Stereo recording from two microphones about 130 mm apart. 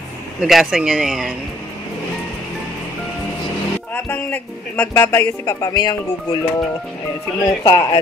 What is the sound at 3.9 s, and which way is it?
A man's voice, 15° left (ahead or behind).